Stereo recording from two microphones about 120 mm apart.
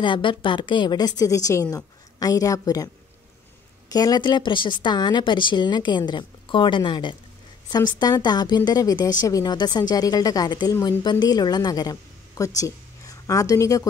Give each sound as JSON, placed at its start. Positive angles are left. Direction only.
{"t": 0.0, "sound": "a woman's voice", "side_deg": 45}
{"t": 3.9, "sound": "a woman's voice", "side_deg": 35}